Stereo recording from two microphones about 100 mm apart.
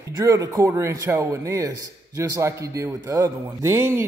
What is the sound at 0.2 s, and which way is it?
A man's voice, 35° right (ahead or behind).